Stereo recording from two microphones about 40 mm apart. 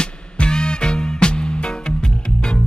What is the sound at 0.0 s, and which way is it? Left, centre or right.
Music, left.